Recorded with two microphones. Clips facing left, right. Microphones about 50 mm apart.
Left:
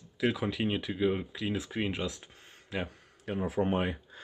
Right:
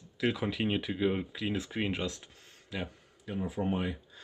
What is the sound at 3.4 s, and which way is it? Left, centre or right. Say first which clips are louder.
Speech: left 3 dB; left.